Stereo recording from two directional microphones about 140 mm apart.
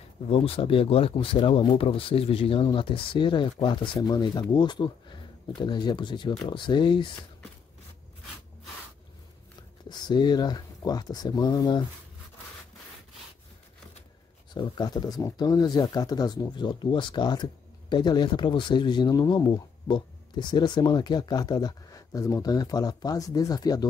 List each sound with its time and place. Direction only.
0.3 s speech: 40° left (ahead or behind)
9.8 s speech: 30° left (ahead or behind)
14.5 s speech: 30° left (ahead or behind)